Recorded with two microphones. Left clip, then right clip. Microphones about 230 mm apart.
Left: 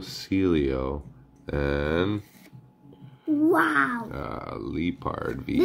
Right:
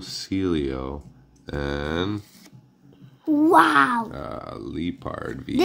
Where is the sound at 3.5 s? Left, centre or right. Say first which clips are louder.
Right 7 dB; right.